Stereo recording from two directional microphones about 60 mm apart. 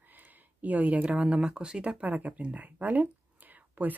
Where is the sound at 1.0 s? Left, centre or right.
Centre.